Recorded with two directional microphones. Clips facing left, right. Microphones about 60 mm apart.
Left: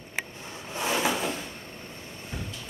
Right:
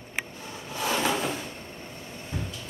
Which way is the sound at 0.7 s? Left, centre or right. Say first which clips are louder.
Even; centre.